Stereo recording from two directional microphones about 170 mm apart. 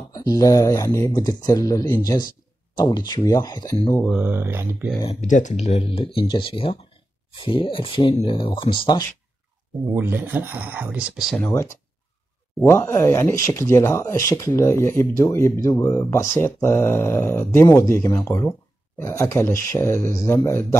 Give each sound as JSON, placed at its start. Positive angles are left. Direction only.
{"t": 0.1, "sound": "speech", "side_deg": 20}
{"t": 4.2, "sound": "speech", "side_deg": -10}
{"t": 5.2, "sound": "speech", "side_deg": 45}
{"t": 9.9, "sound": "speech", "side_deg": -10}
{"t": 11.4, "sound": "speech", "side_deg": 15}